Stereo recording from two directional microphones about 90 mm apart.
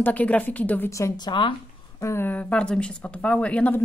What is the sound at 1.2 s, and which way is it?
Speech, 60° left (ahead or behind).